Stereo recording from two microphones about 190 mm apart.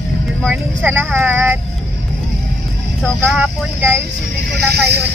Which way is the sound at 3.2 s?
5° right (ahead or behind).